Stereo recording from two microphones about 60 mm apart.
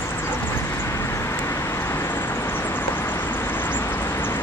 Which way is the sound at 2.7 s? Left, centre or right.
Left.